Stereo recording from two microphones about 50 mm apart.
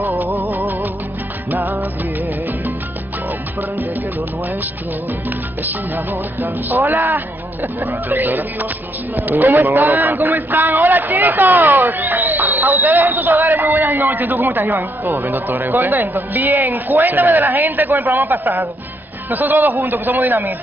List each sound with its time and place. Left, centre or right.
0.0 s music: right
5.6 s a man's voice: right